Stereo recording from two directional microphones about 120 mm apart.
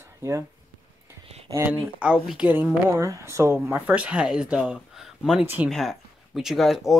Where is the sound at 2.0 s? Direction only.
10° right (ahead or behind).